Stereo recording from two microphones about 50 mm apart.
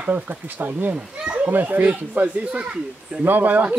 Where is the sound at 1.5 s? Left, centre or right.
Right.